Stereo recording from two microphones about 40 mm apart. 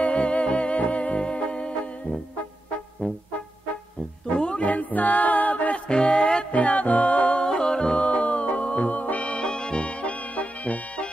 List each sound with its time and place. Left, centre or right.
0.0 s music: left
4.4 s music: left
4.6 s music: left
5.9 s music: left
6.5 s music: left
7.4 s music: centre